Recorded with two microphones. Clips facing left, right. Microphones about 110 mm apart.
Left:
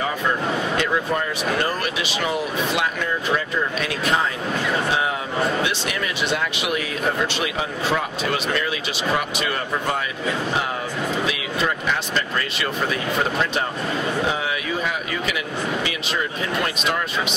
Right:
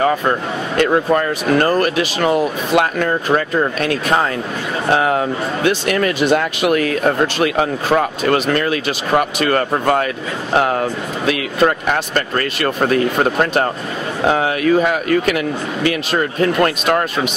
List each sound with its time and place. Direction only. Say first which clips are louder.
0.7 s a man's voice: right 13 dB; 50° right (ahead or behind)
11.2 s a man's voice: right 8 dB; 55° right (ahead or behind)